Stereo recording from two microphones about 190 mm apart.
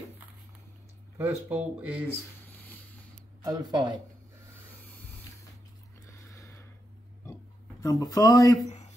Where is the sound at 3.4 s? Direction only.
20° right (ahead or behind).